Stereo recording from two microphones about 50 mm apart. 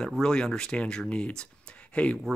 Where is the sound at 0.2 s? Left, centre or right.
Centre.